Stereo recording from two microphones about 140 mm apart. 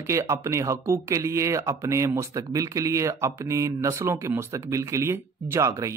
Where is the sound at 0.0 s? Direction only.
20° right (ahead or behind).